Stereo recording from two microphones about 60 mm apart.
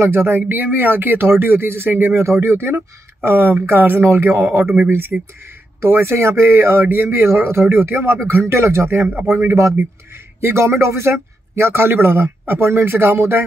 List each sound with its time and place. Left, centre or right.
0.0 s speech: right
4.8 s speech: right
9.0 s speech: right
10.4 s speech: right